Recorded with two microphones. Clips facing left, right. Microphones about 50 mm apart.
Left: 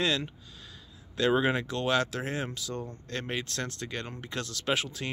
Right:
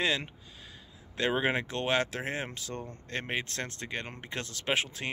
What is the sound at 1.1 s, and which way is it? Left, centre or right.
Speech, right.